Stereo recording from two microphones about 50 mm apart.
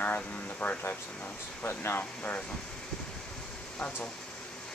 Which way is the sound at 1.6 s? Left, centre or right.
Left.